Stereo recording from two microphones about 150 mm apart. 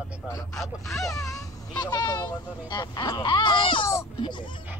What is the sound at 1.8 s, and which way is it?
Vehicle, 25° left (ahead or behind).